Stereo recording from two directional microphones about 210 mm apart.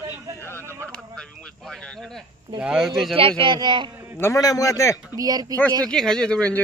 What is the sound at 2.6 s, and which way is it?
Speech, 5° right (ahead or behind).